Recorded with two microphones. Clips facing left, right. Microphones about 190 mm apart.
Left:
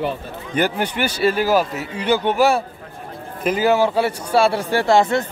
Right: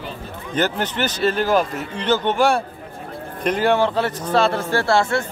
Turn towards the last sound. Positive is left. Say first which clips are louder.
# left 3 dB
turn(degrees=20)  # may be behind; listen again after turning